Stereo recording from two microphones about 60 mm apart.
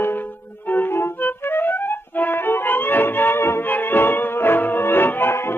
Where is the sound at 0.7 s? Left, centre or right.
Left.